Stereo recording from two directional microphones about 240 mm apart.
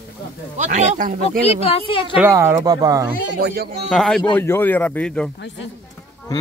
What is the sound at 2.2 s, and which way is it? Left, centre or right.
Speech, centre.